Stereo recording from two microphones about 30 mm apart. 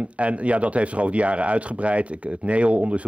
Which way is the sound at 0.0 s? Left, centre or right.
Right.